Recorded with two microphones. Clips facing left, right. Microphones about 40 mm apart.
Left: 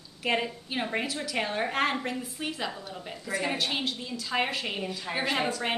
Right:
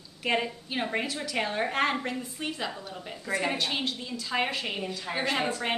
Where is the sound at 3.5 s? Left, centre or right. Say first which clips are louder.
Even; centre.